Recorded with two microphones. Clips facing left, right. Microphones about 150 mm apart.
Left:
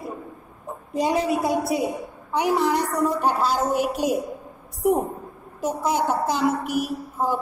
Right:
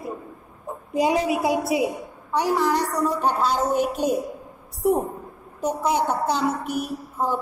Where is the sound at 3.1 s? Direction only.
10° left (ahead or behind).